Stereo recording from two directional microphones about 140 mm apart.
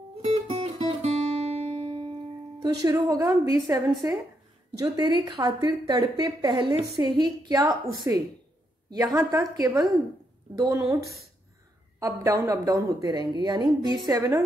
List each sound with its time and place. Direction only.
0.2 s guitar: 50° right (ahead or behind)
2.6 s a woman's voice: 25° right (ahead or behind)
12.0 s a woman's voice: 25° right (ahead or behind)